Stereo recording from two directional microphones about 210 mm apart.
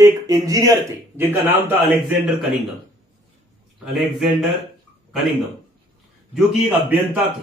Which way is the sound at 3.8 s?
Centre (ahead or behind).